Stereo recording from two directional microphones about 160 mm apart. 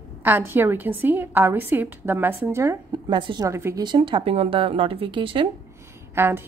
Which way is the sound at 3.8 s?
30° right (ahead or behind).